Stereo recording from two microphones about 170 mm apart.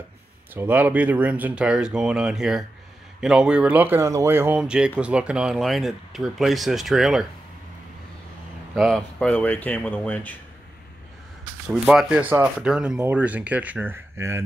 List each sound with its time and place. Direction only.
0.6 s speech: 10° right (ahead or behind)
8.7 s speech: centre (ahead or behind)
11.6 s speech: 5° right (ahead or behind)